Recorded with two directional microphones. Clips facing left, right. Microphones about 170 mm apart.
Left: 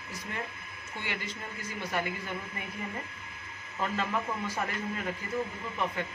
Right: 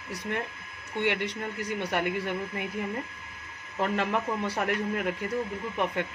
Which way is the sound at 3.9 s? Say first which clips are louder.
Right 3 dB; 70° right (ahead or behind).